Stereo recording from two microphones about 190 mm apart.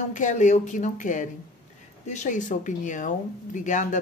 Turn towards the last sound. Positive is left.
turn(degrees=40)  # may be behind; listen again after turning